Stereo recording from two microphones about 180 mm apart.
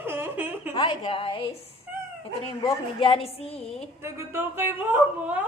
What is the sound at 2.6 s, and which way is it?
A woman's voice, 30° left (ahead or behind).